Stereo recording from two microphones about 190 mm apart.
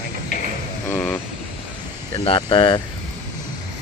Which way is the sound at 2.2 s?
25° left (ahead or behind).